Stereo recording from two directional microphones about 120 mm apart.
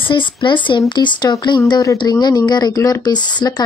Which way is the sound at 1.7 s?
30° left (ahead or behind).